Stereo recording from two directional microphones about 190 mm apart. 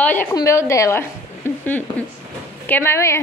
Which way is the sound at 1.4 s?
10° left (ahead or behind).